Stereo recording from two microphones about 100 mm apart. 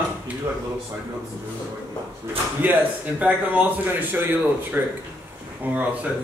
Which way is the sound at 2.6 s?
15° right (ahead or behind).